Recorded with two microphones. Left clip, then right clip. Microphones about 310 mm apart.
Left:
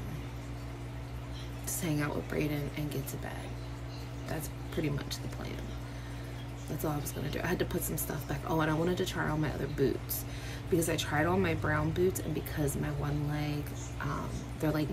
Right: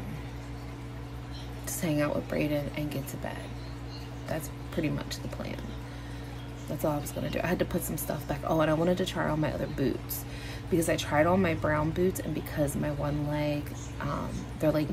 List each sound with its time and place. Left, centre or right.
1.7 s speech: centre
4.3 s speech: centre
6.8 s speech: centre
14.6 s speech: centre